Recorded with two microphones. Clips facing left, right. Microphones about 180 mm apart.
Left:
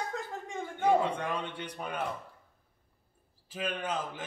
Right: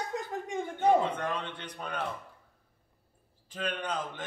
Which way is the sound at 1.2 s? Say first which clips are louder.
Even; 10° left (ahead or behind).